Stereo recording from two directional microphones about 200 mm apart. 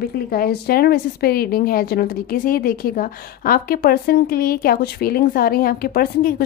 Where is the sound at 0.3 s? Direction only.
50° left (ahead or behind).